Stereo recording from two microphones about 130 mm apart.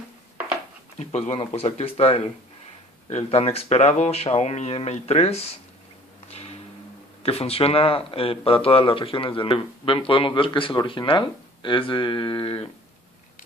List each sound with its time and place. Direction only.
0.9 s a man's voice: 60° left (ahead or behind)
6.2 s a sound: 55° left (ahead or behind)
7.2 s a man's voice: 50° left (ahead or behind)